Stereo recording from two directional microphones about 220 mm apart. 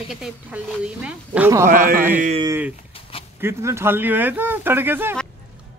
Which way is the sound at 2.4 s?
10° right (ahead or behind).